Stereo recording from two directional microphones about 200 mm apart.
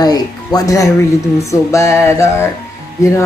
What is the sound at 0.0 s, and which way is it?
Speech, 20° left (ahead or behind).